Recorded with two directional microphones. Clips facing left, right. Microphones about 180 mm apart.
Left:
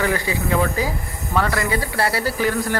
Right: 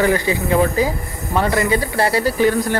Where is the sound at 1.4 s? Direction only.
25° right (ahead or behind).